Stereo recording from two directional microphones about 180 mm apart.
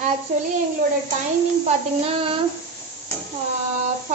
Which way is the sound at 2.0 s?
30° right (ahead or behind).